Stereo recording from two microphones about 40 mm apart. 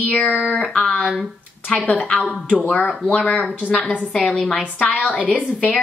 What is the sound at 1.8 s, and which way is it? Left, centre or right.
A woman's voice, left.